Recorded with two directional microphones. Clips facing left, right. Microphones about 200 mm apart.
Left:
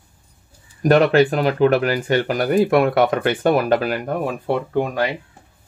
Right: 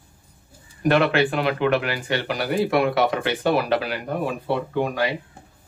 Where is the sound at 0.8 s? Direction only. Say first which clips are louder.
Left 5 dB; 40° left (ahead or behind).